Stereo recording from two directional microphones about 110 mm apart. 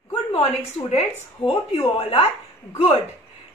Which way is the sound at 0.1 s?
65° left (ahead or behind).